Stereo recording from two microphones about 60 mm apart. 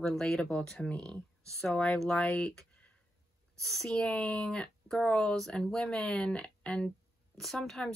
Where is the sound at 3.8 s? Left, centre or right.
Centre.